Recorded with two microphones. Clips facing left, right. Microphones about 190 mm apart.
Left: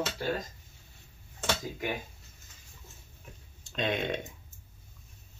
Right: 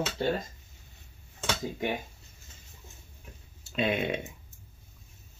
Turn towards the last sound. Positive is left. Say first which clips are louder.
# right 2 dB
turn(degrees=-5)  # may be behind; listen again after turning